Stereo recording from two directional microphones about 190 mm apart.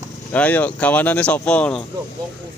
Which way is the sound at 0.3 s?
10° left (ahead or behind).